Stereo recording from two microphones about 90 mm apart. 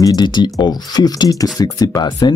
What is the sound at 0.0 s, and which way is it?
Speech, 55° left (ahead or behind).